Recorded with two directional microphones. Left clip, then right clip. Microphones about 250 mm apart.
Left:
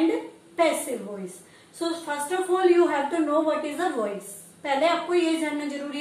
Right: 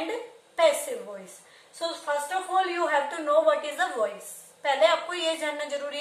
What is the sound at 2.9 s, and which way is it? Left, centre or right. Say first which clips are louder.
A woman's voice: even; centre.